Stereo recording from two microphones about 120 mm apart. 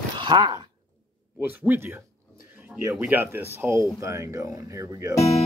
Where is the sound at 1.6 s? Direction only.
15° right (ahead or behind).